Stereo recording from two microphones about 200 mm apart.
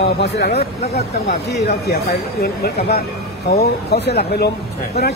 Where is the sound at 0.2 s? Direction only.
55° left (ahead or behind).